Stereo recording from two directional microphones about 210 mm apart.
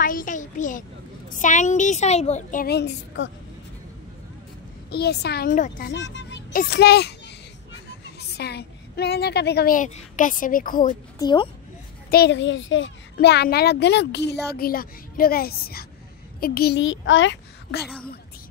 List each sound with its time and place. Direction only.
0.0 s a sound: 40° left (ahead or behind)
1.3 s a woman's voice: 35° left (ahead or behind); by 3.3 s 55° left (ahead or behind)
4.9 s a child's voice: 50° left (ahead or behind)
5.9 s music: 60° left (ahead or behind)
6.5 s a child's voice: 45° left (ahead or behind)
8.2 s a child's voice: 50° left (ahead or behind)
11.1 s a woman's voice: 20° left (ahead or behind)
12.1 s a child's voice: 50° left (ahead or behind)